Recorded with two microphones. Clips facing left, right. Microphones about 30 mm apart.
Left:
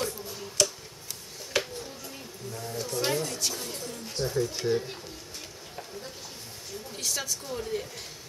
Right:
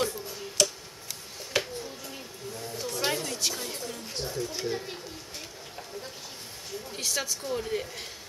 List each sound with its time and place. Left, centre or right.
0.0 s a sound: centre
3.2 s a woman's voice: centre
4.3 s speech: centre
6.9 s a woman's voice: centre